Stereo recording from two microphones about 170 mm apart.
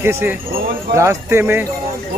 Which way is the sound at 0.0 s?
15° right (ahead or behind).